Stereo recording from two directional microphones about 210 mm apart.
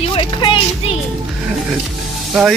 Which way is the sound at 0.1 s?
25° left (ahead or behind).